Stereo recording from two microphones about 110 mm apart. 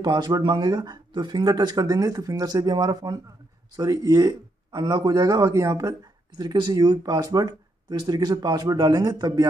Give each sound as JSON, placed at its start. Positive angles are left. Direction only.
{"t": 0.0, "sound": "a man's voice", "side_deg": -40}